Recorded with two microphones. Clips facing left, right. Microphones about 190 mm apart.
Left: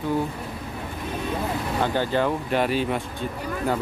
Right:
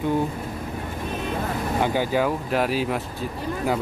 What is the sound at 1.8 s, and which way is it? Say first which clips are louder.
Speech: right 1 dB; 10° right (ahead or behind).